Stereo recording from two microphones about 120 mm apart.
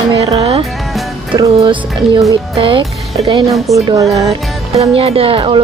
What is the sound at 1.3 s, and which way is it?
Speech, 50° right (ahead or behind).